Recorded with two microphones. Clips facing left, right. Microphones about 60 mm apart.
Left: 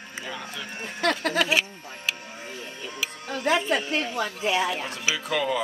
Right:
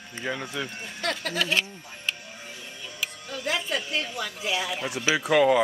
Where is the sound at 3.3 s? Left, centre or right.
Left.